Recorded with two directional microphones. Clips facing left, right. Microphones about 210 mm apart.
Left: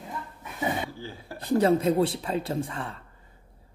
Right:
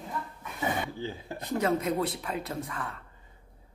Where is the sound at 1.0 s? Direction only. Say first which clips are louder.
Right 3 dB; 20° right (ahead or behind).